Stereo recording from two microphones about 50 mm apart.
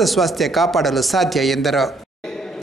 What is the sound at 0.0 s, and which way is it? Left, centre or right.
Speech, centre.